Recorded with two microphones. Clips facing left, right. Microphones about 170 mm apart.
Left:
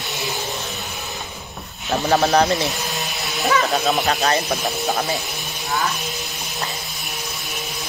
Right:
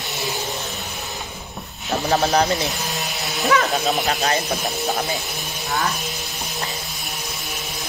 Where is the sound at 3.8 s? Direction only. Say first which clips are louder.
Left 2 dB; 40° left (ahead or behind).